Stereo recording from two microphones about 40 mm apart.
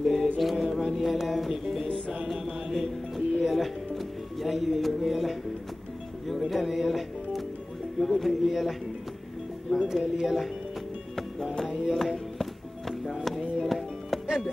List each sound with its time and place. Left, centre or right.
0.0 s music: centre
10.2 s speech: centre
11.6 s music: centre